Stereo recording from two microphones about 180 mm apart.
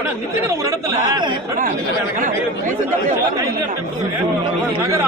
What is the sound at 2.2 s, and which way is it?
Speech, 45° right (ahead or behind).